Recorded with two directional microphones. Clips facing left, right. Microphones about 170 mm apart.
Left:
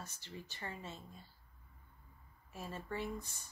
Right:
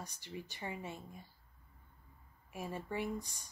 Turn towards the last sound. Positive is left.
turn(degrees=-15)  # may be behind; listen again after turning